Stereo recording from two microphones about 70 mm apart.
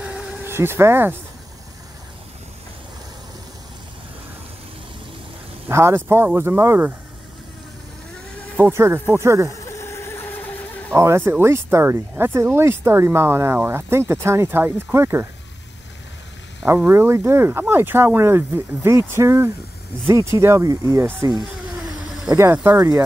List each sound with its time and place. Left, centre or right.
0.0 s vehicle: centre
0.4 s speech: right
5.7 s speech: right
8.7 s speech: right
9.7 s dog: left
11.1 s speech: right
16.6 s speech: right
20.6 s speech: right
20.9 s speech: right
22.3 s speech: centre
22.6 s speech: right